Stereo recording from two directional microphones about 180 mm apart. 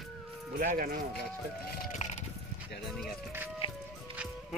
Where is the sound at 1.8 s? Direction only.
40° left (ahead or behind).